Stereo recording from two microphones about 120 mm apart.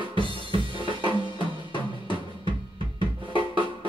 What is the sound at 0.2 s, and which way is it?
Drum kit, 45° right (ahead or behind).